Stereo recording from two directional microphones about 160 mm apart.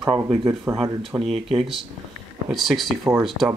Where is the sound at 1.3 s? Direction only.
35° right (ahead or behind).